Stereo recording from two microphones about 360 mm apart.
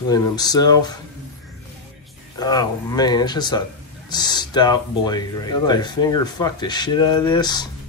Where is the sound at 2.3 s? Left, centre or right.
Centre.